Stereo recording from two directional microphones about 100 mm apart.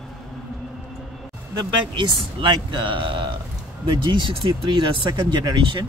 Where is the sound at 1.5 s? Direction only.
55° right (ahead or behind).